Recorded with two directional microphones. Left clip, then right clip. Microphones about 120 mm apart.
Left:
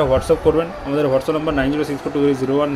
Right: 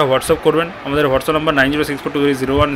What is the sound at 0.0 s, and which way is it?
Speech, centre (ahead or behind).